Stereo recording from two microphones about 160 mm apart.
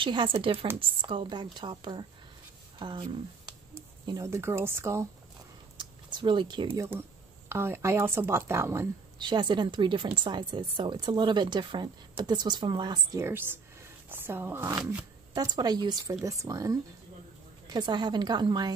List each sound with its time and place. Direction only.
0.0 s a woman's voice: 30° right (ahead or behind)
5.8 s a sound: 30° right (ahead or behind)
6.7 s speech: 15° right (ahead or behind)
9.2 s speech: 30° right (ahead or behind)
13.2 s speech: 15° right (ahead or behind)
15.3 s speech: 25° right (ahead or behind)
17.7 s speech: 25° right (ahead or behind)